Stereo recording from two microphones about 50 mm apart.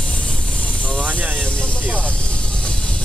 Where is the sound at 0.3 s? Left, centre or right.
Left.